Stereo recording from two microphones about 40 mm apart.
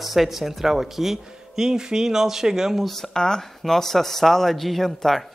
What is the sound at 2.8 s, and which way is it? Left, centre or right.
A man's voice, centre.